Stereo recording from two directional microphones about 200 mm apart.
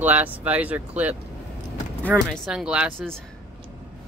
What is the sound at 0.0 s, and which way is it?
Speech, 10° right (ahead or behind).